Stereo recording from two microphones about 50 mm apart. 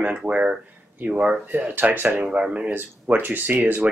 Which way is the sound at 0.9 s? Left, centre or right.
Right.